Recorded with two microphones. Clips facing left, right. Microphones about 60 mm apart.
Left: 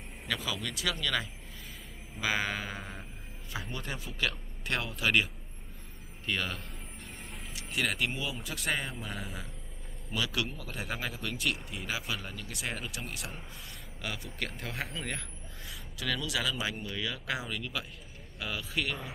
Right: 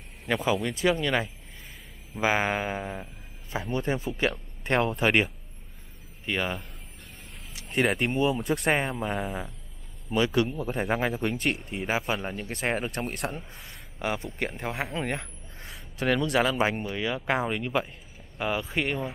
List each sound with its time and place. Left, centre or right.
0.3 s speech: right
7.7 s speech: right
10.1 s speech: right
13.9 s speech: right
16.8 s speech: right